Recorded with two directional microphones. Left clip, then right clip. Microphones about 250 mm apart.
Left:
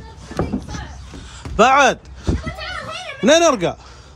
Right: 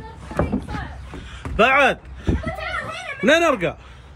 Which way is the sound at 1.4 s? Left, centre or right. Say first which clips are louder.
Left 3 dB; centre.